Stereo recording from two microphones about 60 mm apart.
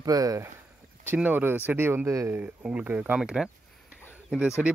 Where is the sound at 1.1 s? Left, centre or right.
Right.